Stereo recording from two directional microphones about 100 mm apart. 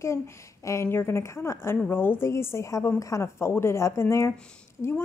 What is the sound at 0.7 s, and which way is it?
A woman's voice, 25° left (ahead or behind).